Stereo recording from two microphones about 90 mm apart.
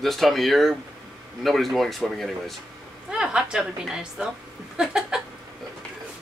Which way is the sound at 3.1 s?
10° right (ahead or behind).